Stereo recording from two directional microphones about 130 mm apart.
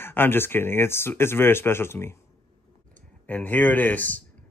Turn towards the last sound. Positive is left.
turn(degrees=15)  # may be behind; listen again after turning